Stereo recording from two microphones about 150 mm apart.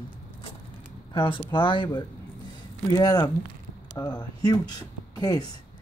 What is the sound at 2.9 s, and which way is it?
Speech, 25° left (ahead or behind).